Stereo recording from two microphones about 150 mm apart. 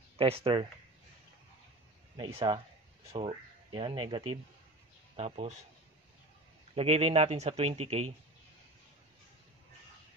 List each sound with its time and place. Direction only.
0.2 s speech: 40° right (ahead or behind)
2.1 s speech: 35° right (ahead or behind)
6.7 s speech: 40° right (ahead or behind)